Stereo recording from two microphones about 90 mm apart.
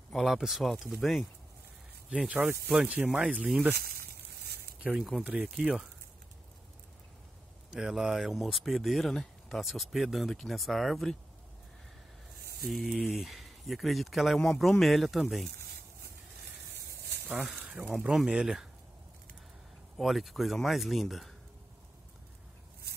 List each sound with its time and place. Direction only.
0.1 s speech: 5° right (ahead or behind)
4.8 s speech: 5° right (ahead or behind)
7.7 s speech: 5° right (ahead or behind)
12.6 s speech: centre (ahead or behind)
17.6 s a sound: 20° right (ahead or behind)
17.8 s speech: 5° right (ahead or behind)
20.0 s speech: centre (ahead or behind)